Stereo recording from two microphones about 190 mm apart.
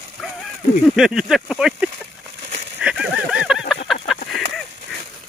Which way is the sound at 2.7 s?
5° right (ahead or behind).